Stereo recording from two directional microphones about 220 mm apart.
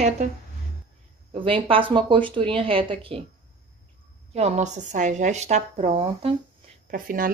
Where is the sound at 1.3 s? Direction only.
25° right (ahead or behind).